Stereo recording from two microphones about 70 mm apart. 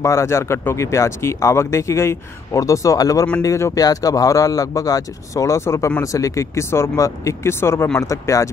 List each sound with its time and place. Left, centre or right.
0.0 s speech: left
3.8 s speech: left
8.0 s speech: left